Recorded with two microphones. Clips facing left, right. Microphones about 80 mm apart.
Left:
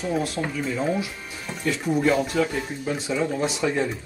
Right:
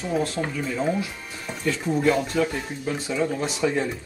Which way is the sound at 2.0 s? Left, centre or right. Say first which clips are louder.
Right 1 dB; centre.